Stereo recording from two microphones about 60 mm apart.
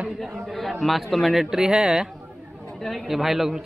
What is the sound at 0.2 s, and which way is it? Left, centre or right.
A man's voice, centre.